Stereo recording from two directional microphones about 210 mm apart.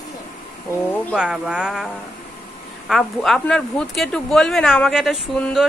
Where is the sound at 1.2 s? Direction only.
5° right (ahead or behind).